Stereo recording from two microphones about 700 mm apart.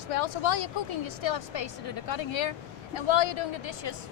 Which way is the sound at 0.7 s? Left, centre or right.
Left.